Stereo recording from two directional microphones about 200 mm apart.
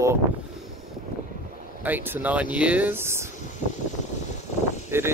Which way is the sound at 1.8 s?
10° right (ahead or behind).